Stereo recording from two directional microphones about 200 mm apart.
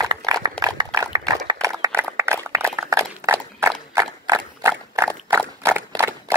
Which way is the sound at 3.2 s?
15° right (ahead or behind).